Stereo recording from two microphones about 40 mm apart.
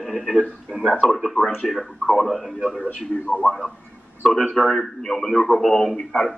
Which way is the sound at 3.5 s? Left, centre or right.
Centre.